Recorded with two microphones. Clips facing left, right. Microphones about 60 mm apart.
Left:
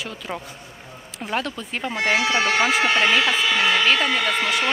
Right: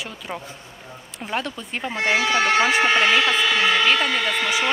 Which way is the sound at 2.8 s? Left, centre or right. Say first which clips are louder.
Right 1 dB; centre.